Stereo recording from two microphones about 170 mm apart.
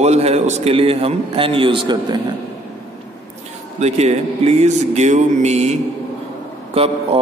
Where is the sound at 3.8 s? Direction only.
40° right (ahead or behind).